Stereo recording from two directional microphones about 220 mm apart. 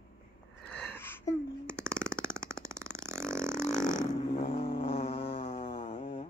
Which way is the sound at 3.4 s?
10° right (ahead or behind).